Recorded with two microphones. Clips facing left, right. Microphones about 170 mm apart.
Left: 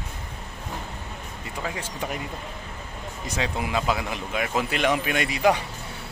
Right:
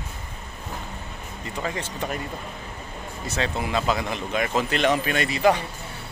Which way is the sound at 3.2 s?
10° left (ahead or behind).